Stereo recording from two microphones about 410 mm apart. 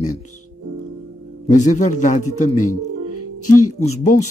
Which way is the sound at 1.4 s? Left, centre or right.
Centre.